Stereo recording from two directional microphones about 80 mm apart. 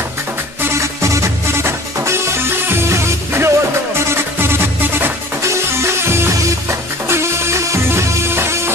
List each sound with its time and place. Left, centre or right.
0.6 s music: right